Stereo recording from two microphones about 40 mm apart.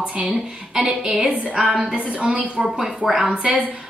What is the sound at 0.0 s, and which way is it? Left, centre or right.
A woman's voice, right.